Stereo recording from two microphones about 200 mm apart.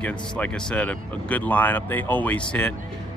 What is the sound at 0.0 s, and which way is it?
Speech, 5° left (ahead or behind).